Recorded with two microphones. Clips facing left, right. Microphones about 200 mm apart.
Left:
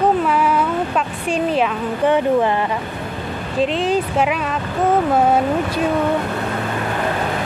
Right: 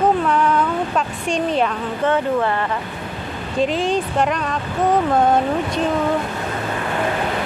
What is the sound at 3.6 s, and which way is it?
Speech, centre (ahead or behind).